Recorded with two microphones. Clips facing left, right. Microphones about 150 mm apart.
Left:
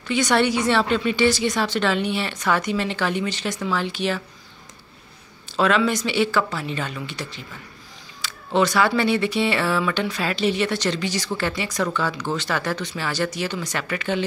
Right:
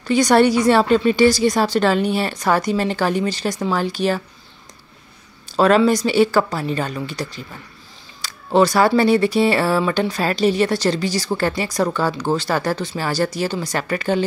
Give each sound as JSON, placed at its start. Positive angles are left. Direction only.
{"t": 0.0, "sound": "speech", "side_deg": -35}
{"t": 5.6, "sound": "speech", "side_deg": -40}